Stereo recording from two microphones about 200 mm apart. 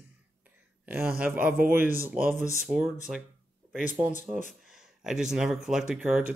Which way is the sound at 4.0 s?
15° right (ahead or behind).